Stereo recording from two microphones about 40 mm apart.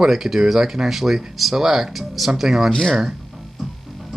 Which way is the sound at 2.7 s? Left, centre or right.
Centre.